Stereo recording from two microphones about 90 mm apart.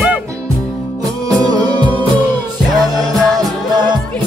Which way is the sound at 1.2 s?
45° right (ahead or behind).